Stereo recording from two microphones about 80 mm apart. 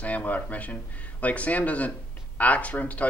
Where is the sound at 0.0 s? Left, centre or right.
Centre.